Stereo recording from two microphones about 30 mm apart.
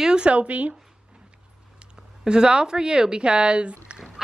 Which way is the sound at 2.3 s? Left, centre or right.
Right.